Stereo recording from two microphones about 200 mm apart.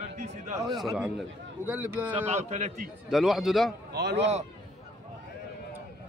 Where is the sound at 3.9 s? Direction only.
60° right (ahead or behind).